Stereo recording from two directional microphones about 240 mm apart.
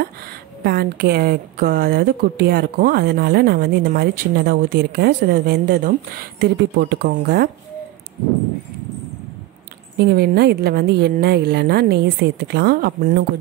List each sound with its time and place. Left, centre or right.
0.7 s speech: right
9.9 s speech: right